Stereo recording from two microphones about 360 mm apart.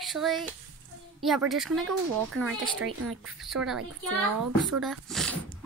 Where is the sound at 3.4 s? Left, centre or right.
Centre.